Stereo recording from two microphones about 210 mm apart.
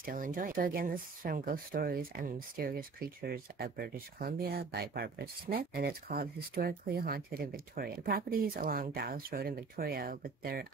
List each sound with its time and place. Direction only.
0.0 s speech: 40° right (ahead or behind)